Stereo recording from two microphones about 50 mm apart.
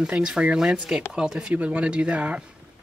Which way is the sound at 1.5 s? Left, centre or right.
Right.